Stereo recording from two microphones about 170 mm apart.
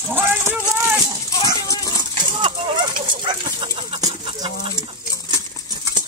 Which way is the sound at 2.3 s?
25° right (ahead or behind).